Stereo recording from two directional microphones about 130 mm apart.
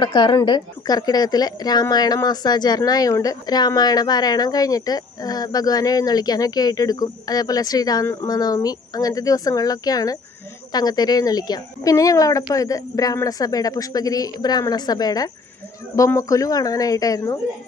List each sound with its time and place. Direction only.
0.0 s a woman's voice: 35° left (ahead or behind)